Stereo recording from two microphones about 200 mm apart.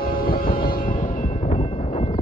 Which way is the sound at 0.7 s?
45° left (ahead or behind).